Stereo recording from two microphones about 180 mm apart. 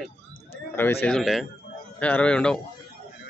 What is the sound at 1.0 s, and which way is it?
Speech, centre (ahead or behind).